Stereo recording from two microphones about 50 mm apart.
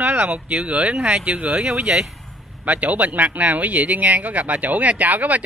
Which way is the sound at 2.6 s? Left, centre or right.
Right.